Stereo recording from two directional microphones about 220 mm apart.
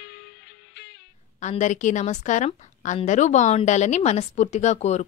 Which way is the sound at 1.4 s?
35° left (ahead or behind).